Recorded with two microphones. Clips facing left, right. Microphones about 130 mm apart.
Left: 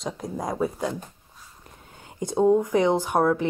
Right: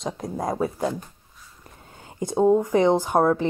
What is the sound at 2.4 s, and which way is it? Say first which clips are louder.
Speech: right 2 dB; 20° right (ahead or behind).